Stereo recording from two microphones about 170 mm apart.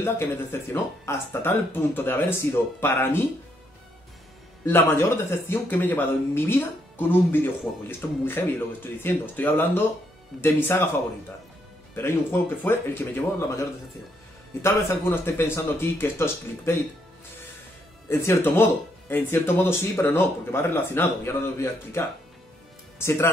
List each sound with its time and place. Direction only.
0.0 s speech: 15° left (ahead or behind)
4.6 s speech: 15° left (ahead or behind)
11.9 s speech: 15° left (ahead or behind)
18.0 s speech: 15° left (ahead or behind)